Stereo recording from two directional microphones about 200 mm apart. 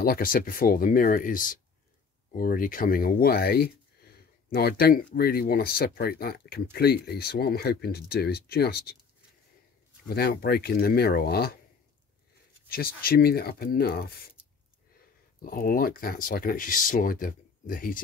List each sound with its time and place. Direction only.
0.0 s speech: 45° left (ahead or behind)
10.0 s speech: 50° left (ahead or behind)
12.6 s speech: 50° left (ahead or behind)
15.4 s speech: 45° left (ahead or behind)